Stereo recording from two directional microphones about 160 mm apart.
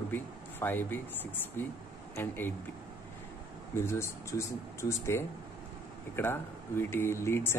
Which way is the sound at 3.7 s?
15° left (ahead or behind).